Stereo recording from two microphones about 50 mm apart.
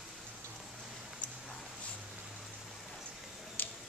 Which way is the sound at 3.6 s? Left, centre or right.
Left.